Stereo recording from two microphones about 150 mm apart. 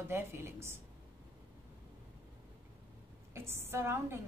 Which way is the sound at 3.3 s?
15° right (ahead or behind).